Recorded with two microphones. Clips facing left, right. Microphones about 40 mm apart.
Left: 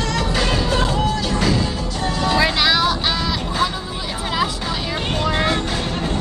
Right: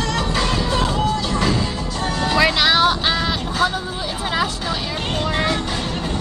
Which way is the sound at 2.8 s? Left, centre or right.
Right.